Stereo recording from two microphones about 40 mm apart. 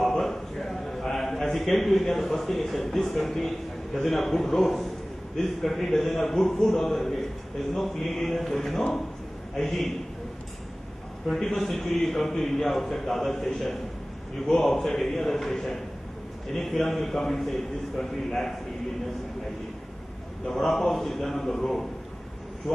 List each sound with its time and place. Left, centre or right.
0.0 s a sound: centre
1.6 s a man's voice: centre
11.2 s a man's voice: centre
16.8 s a man's voice: centre
18.0 s a man's voice: centre
20.4 s a man's voice: centre